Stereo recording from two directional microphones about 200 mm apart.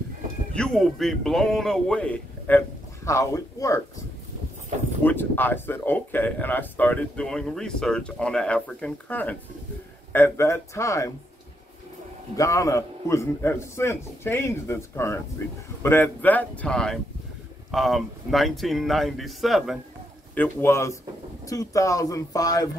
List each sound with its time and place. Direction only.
0.6 s speech: centre (ahead or behind); by 3.8 s 15° left (ahead or behind)
5.0 s speech: 10° left (ahead or behind)
12.4 s speech: 15° left (ahead or behind); by 19.8 s centre (ahead or behind)
20.3 s speech: 10° left (ahead or behind)